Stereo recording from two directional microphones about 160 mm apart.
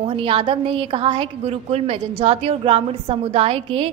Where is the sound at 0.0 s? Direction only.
35° right (ahead or behind).